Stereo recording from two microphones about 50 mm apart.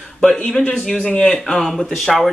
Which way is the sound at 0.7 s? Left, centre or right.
Left.